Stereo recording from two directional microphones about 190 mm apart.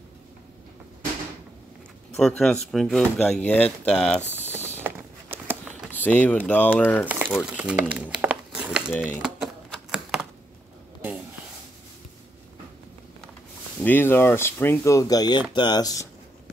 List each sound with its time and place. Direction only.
2.1 s speech: 5° left (ahead or behind)
4.2 s mechanisms: 10° right (ahead or behind)
4.7 s a sound: 10° right (ahead or behind)
5.9 s speech: 10° left (ahead or behind)
7.2 s speech: 5° right (ahead or behind)
9.2 s typewriter: 5° right (ahead or behind)
13.8 s speech: 10° left (ahead or behind)